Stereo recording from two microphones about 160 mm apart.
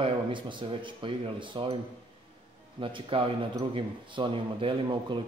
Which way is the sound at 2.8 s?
30° right (ahead or behind).